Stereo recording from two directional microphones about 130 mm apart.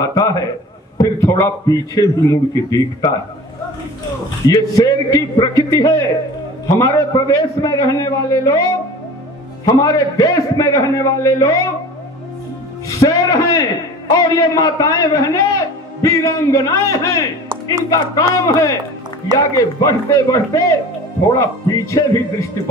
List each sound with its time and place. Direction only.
0.0 s a man's voice: 30° left (ahead or behind)
4.5 s a man's voice: 25° left (ahead or behind)
9.7 s a man's voice: 30° left (ahead or behind)
12.8 s a man's voice: 25° left (ahead or behind)